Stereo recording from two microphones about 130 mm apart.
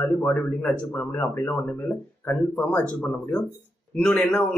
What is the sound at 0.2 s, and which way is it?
A man's voice, 10° left (ahead or behind).